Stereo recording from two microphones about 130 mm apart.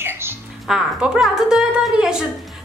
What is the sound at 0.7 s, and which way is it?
A woman's voice, 5° right (ahead or behind).